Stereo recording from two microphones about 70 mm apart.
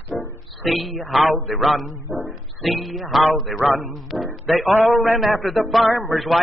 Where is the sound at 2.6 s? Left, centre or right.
Centre.